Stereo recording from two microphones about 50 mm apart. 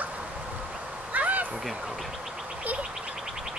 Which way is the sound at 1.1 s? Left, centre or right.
Right.